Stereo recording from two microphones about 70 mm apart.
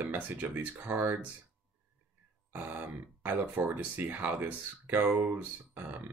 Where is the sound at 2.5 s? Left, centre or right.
Right.